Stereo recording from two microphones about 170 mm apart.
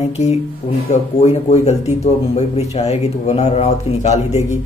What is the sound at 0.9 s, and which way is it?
Speech, 40° left (ahead or behind).